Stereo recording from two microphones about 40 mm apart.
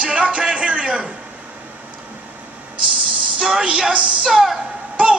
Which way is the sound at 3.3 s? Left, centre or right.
Centre.